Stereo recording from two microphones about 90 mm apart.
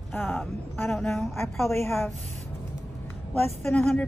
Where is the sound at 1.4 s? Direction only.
Centre (ahead or behind).